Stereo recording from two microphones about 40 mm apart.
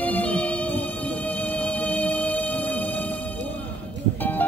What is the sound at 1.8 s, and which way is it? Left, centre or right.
Music, left.